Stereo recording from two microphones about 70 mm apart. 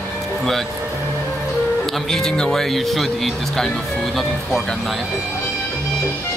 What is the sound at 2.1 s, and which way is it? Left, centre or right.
Speech, centre.